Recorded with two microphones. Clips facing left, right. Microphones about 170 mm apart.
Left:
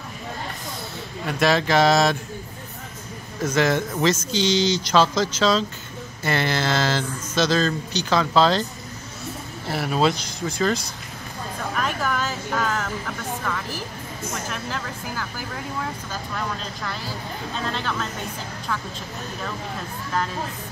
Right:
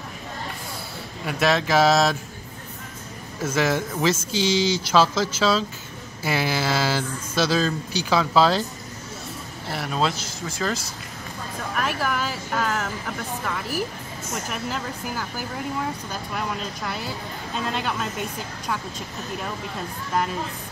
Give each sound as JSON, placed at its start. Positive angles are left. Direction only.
{"t": 1.2, "sound": "a man's voice", "side_deg": 0}
{"t": 3.3, "sound": "a man's voice", "side_deg": -5}
{"t": 9.7, "sound": "a man's voice", "side_deg": 5}